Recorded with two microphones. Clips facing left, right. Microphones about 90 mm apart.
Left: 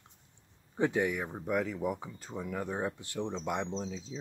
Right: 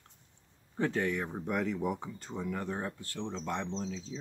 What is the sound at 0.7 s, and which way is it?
Speech, 15° left (ahead or behind).